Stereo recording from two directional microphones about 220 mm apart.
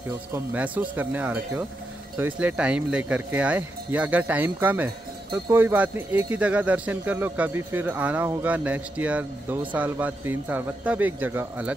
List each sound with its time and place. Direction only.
0.3 s speech: 10° right (ahead or behind)